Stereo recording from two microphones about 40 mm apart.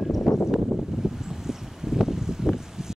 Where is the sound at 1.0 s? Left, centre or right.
Centre.